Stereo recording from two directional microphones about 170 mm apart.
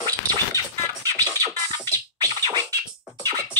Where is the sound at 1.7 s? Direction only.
25° right (ahead or behind).